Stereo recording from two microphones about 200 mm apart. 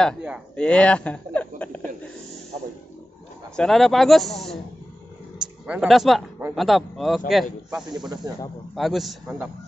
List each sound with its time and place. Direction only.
0.0 s speech: centre (ahead or behind)
3.5 s speech: centre (ahead or behind)
5.7 s speech: centre (ahead or behind)
8.1 s speech: 20° right (ahead or behind)
8.7 s speech: centre (ahead or behind)